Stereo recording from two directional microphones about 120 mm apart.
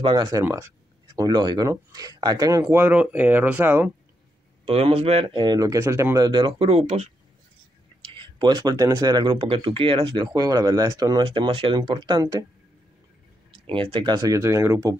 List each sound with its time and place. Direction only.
0.0 s speech: 40° right (ahead or behind)
0.4 s speech: 20° right (ahead or behind)
1.1 s speech: 35° right (ahead or behind)
2.7 s speech: 15° right (ahead or behind)
4.6 s speech: 55° right (ahead or behind)
5.3 s speech: 40° right (ahead or behind)
6.6 s speech: 60° right (ahead or behind)
8.0 s speech: 45° right (ahead or behind)
13.7 s speech: 45° right (ahead or behind); by 15.0 s 25° right (ahead or behind)